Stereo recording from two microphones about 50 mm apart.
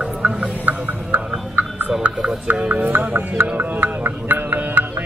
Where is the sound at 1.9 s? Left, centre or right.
Right.